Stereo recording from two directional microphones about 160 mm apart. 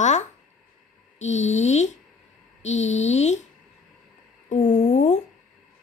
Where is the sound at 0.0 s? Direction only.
45° left (ahead or behind).